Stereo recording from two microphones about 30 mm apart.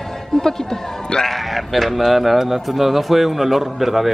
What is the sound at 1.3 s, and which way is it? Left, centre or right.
A man's voice, centre.